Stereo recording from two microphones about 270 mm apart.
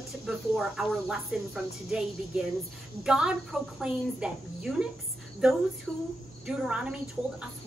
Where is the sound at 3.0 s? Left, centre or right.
Centre.